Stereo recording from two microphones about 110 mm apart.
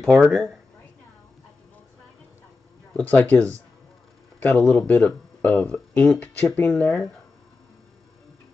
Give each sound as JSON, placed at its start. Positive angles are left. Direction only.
{"t": 0.0, "sound": "speech", "side_deg": 0}
{"t": 2.9, "sound": "speech", "side_deg": 15}